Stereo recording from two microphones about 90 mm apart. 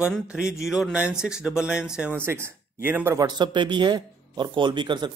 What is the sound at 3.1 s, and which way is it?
Speech, 50° right (ahead or behind).